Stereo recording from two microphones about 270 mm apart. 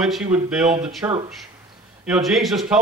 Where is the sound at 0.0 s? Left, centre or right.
Centre.